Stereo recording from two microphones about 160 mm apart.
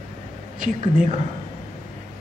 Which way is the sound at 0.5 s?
55° right (ahead or behind).